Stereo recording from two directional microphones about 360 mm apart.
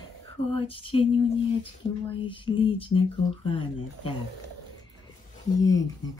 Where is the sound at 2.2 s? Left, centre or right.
Centre.